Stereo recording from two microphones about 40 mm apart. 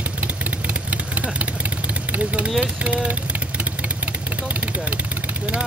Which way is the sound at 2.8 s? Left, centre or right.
Right.